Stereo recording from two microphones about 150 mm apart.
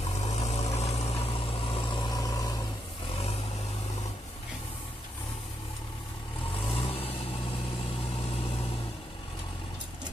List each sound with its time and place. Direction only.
0.2 s vehicle: 50° left (ahead or behind); by 2.5 s 25° left (ahead or behind)
6.7 s vehicle: 40° left (ahead or behind)